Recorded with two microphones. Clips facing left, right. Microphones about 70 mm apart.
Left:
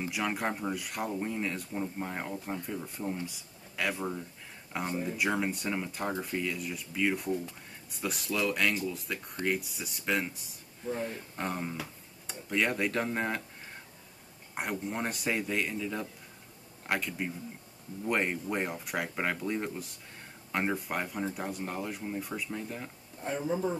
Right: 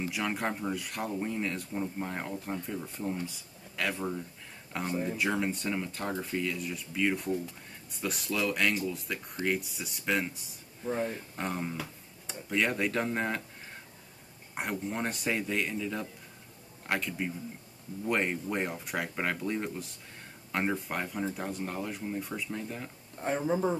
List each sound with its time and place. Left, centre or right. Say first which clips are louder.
0.0 s speech: even; centre
14.5 s speech: even; centre
23.2 s speech: right 3 dB; right